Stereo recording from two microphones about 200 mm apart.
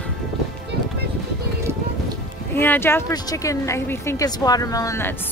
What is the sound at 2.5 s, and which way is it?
Speech, 10° left (ahead or behind).